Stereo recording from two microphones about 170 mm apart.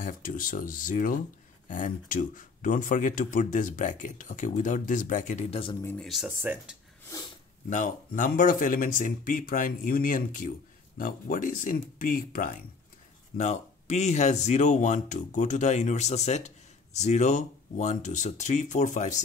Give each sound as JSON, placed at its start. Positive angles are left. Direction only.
{"t": 0.0, "sound": "speech", "side_deg": 50}
{"t": 5.9, "sound": "speech", "side_deg": 0}
{"t": 7.7, "sound": "speech", "side_deg": 50}